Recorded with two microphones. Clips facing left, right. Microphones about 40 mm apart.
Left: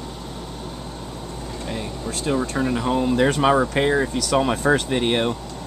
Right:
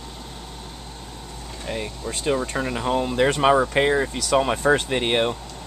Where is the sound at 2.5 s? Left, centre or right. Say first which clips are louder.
Left 2 dB; centre.